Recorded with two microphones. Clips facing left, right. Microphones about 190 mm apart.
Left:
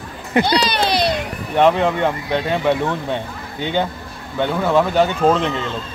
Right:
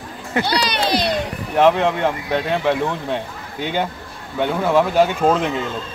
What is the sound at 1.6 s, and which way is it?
Speech, centre (ahead or behind).